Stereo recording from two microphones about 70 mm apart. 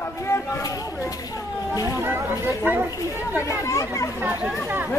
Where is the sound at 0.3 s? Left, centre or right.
Left.